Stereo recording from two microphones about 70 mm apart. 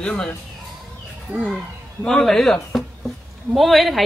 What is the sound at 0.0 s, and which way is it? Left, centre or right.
Speech, centre.